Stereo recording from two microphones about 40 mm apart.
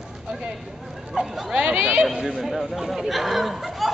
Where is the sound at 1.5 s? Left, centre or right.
Centre.